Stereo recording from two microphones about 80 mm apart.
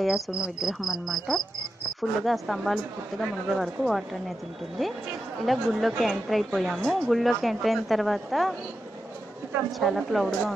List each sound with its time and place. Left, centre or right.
0.0 s a woman's voice: centre
5.4 s a woman's voice: centre
9.8 s a woman's voice: centre